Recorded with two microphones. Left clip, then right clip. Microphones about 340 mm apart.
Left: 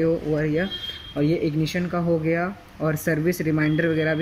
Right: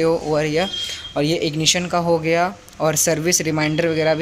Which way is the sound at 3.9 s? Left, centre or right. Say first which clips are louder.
Right 5 dB; right.